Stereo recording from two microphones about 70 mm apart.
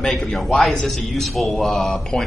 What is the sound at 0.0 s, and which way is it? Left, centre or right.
A man's voice, centre.